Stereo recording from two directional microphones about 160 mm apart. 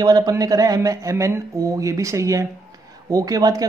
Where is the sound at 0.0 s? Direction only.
25° right (ahead or behind).